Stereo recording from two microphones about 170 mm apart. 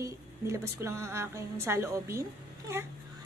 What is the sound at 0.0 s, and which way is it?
A woman's voice, 15° right (ahead or behind).